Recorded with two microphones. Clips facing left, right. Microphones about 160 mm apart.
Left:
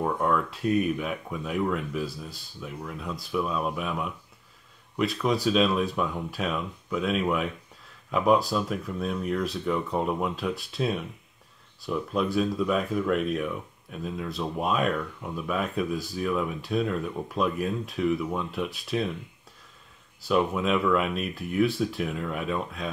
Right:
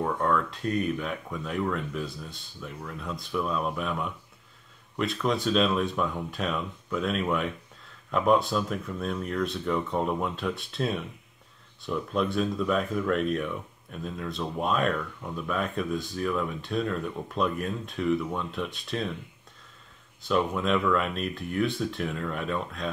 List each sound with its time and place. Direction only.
0.0 s speech: 10° left (ahead or behind)
20.2 s speech: 5° left (ahead or behind)